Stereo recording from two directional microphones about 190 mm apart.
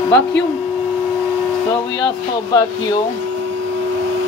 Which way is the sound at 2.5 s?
20° left (ahead or behind).